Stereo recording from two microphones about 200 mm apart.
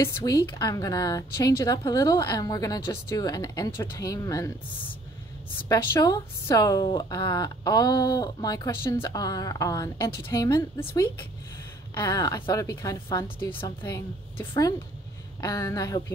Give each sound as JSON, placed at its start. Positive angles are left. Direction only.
{"t": 0.0, "sound": "speech", "side_deg": 15}
{"t": 5.7, "sound": "speech", "side_deg": 15}
{"t": 11.9, "sound": "speech", "side_deg": 20}